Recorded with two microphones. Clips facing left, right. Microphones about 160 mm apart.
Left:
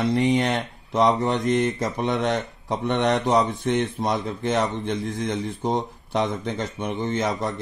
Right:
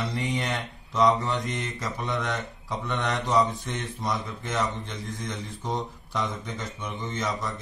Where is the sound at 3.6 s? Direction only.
60° left (ahead or behind).